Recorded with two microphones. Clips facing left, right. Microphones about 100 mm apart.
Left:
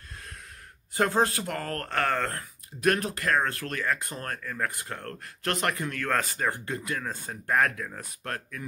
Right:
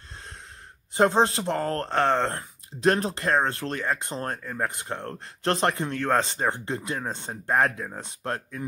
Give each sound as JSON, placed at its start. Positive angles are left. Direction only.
{"t": 0.9, "sound": "speech", "side_deg": -25}